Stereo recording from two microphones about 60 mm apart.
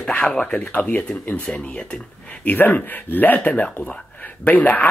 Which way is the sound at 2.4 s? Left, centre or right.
Left.